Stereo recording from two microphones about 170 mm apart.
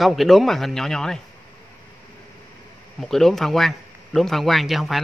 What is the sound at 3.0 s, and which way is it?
A man's voice, centre (ahead or behind).